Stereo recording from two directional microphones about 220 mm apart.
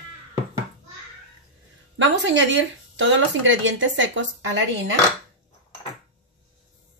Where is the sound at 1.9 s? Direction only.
60° right (ahead or behind).